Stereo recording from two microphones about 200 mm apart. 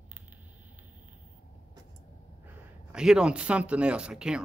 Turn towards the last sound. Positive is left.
turn(degrees=-5)  # may be behind; listen again after turning